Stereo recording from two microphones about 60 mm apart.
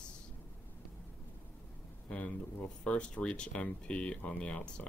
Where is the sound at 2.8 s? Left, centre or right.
Centre.